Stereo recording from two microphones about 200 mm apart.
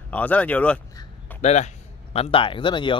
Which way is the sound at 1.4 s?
35° left (ahead or behind).